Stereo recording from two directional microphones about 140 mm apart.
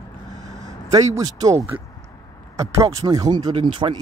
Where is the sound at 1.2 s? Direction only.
25° right (ahead or behind).